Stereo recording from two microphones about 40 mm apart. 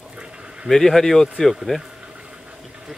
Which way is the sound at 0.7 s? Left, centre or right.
Centre.